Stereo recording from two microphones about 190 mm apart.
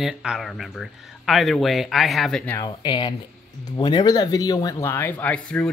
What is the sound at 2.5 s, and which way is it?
Speech, 25° left (ahead or behind).